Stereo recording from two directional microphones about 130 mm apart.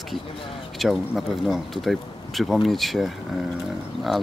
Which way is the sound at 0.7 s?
Centre (ahead or behind).